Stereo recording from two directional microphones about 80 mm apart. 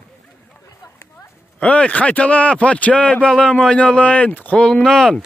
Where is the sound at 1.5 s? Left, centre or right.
Centre.